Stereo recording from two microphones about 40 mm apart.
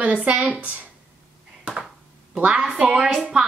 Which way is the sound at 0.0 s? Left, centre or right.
Right.